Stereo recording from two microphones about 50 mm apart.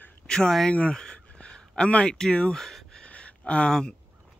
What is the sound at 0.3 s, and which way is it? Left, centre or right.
Speech, centre.